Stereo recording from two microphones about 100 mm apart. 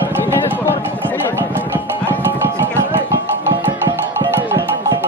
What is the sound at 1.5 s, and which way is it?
Music, 20° right (ahead or behind).